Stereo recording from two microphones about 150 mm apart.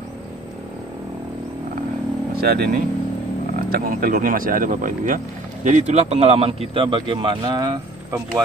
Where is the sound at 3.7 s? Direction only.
80° right.